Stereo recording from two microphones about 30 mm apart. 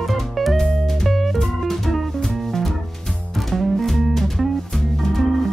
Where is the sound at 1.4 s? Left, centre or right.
Centre.